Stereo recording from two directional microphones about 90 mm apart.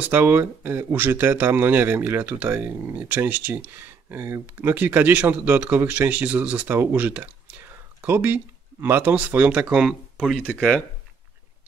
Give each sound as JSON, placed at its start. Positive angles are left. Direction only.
{"t": 0.0, "sound": "speech", "side_deg": -20}
{"t": 10.4, "sound": "speech", "side_deg": 15}